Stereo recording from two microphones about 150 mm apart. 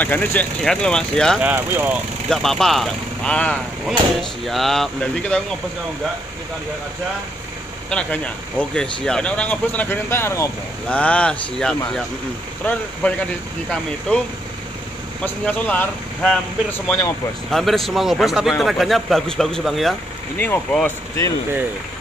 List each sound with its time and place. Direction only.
0.0 s a man's voice: 10° left (ahead or behind)
1.4 s speech: 10° right (ahead or behind)
2.2 s a man's voice: 5° left (ahead or behind)
7.9 s speech: 5° left (ahead or behind)
10.9 s speech: 10° left (ahead or behind)
13.7 s a man's voice: 5° left (ahead or behind)
15.4 s a man's voice: 10° left (ahead or behind)
20.3 s speech: 10° left (ahead or behind)